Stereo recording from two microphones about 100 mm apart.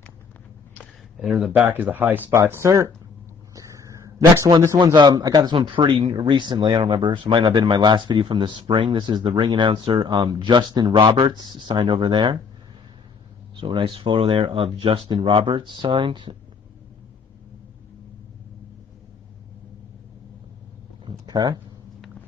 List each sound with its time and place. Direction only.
1.2 s speech: 5° right (ahead or behind)
1.7 s speech: 20° right (ahead or behind)
4.4 s a man's voice: 35° right (ahead or behind)
5.6 s speech: 55° right (ahead or behind)
13.6 s speech: 60° right (ahead or behind)
21.0 s a sound: 45° right (ahead or behind)